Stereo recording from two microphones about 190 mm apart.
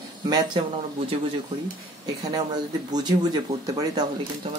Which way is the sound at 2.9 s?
20° right (ahead or behind).